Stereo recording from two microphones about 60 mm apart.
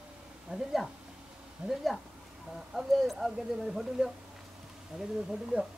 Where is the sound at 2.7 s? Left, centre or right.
Centre.